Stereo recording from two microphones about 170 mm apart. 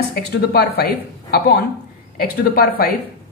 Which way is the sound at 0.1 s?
65° left (ahead or behind).